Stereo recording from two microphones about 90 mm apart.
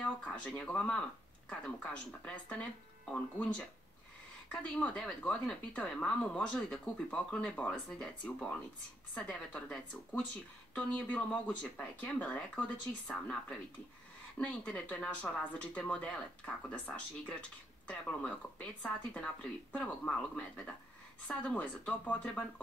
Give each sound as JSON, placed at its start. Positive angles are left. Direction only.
{"t": 0.0, "sound": "speech", "side_deg": 10}
{"t": 14.4, "sound": "speech", "side_deg": 15}